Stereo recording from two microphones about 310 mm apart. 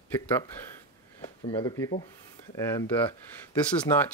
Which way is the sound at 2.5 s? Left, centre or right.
Centre.